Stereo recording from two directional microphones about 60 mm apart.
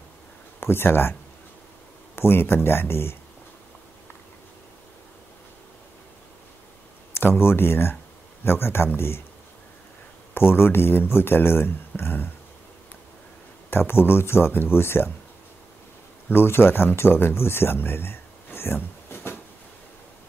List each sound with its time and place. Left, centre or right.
0.6 s speech: left
2.1 s speech: left
7.2 s speech: left
10.3 s speech: left
13.7 s speech: left
16.3 s speech: left